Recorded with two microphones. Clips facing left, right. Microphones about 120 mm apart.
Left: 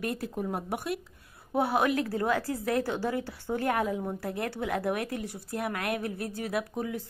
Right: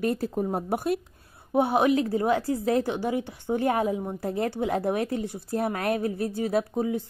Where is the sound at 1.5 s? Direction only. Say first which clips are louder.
Right 5 dB; 20° right (ahead or behind).